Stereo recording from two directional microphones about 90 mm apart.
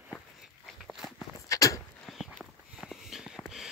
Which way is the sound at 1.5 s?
40° left (ahead or behind).